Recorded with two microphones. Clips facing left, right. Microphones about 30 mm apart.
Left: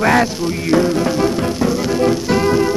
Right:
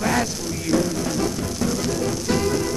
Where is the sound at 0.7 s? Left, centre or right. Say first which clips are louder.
Left 7 dB; left.